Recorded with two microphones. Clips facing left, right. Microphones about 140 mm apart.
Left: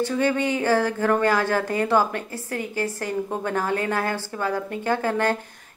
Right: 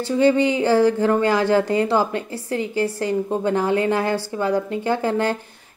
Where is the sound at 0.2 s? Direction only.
15° right (ahead or behind).